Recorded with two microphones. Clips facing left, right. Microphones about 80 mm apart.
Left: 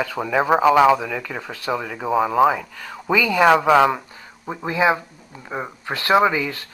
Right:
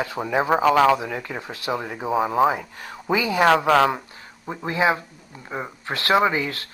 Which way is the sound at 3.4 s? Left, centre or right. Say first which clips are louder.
Left 2 dB; centre.